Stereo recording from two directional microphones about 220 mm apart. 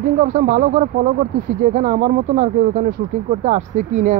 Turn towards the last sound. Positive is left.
turn(degrees=-35)  # may be behind; listen again after turning